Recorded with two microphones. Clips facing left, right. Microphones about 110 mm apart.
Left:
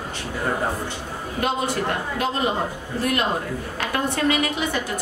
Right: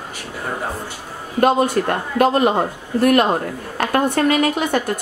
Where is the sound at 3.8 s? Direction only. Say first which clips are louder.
Right 7 dB; 50° right (ahead or behind).